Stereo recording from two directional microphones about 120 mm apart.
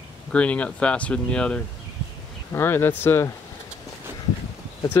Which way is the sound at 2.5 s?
20° left (ahead or behind).